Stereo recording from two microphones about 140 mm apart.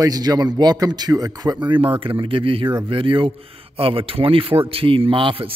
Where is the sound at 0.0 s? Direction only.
25° right (ahead or behind).